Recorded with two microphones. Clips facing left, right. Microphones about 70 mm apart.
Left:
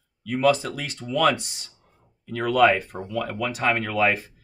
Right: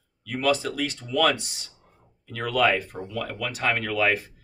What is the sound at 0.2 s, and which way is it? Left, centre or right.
Speech, left.